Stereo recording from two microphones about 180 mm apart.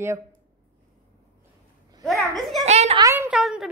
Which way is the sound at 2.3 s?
Centre (ahead or behind).